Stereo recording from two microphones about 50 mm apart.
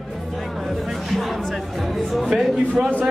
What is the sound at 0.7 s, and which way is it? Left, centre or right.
Speech, centre.